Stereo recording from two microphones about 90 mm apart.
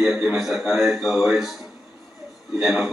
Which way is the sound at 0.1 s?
15° right (ahead or behind).